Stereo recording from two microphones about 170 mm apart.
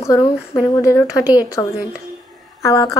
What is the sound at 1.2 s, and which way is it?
Speech, 10° right (ahead or behind).